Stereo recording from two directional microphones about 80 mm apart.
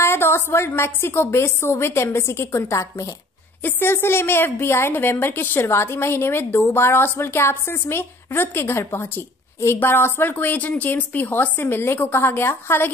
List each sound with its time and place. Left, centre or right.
0.0 s a woman's voice: left
3.6 s a woman's voice: left